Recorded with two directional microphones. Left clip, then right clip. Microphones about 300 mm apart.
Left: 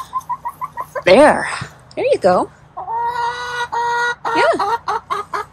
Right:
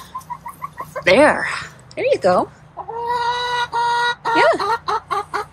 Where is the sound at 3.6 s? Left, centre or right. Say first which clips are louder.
Left 2 dB; centre.